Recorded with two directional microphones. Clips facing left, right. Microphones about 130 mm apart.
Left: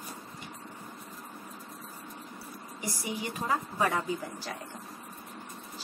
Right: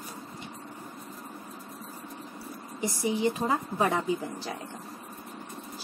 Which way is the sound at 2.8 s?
25° right (ahead or behind).